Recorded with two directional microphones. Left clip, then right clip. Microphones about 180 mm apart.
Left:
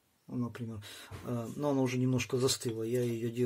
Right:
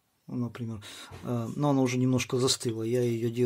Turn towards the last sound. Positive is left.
turn(degrees=-35)  # may be behind; listen again after turning